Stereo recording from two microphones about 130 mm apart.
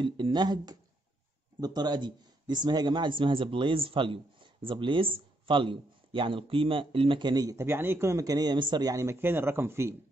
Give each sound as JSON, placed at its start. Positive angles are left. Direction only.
{"t": 0.0, "sound": "a man's voice", "side_deg": -35}